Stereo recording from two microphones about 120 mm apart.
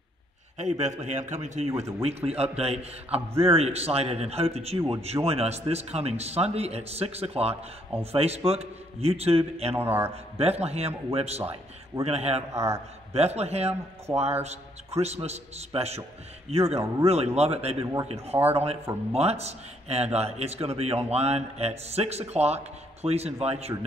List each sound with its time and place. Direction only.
0.6 s a man's voice: 75° right (ahead or behind)
2.0 s speech: 60° right (ahead or behind)
9.8 s a man's voice: 20° right (ahead or behind)
10.4 s speech: 60° right (ahead or behind)
12.5 s a man's voice: 25° right (ahead or behind)
13.1 s speech: 60° right (ahead or behind)